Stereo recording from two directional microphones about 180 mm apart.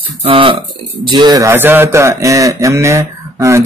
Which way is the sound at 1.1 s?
25° right (ahead or behind).